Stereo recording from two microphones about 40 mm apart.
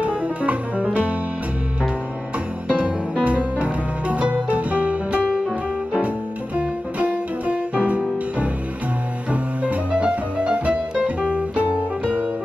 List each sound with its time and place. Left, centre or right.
0.0 s music: right
2.7 s music: right
9.3 s music: right